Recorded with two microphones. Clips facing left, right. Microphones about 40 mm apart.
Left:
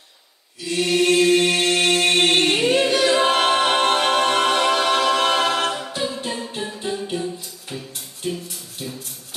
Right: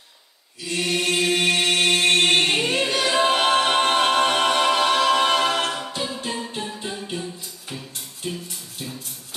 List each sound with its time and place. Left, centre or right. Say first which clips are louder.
0.7 s chant: left 5 dB; centre
7.7 s music: left 3 dB; centre